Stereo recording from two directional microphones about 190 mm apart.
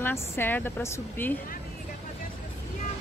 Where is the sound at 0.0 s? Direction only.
10° left (ahead or behind).